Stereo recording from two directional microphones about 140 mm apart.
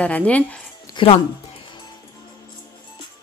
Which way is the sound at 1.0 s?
35° left (ahead or behind).